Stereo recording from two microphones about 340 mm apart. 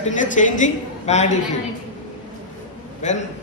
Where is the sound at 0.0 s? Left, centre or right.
Left.